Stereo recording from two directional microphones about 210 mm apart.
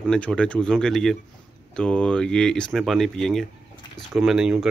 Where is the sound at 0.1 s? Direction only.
5° left (ahead or behind).